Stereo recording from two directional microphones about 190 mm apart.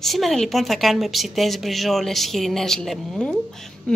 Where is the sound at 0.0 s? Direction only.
Centre (ahead or behind).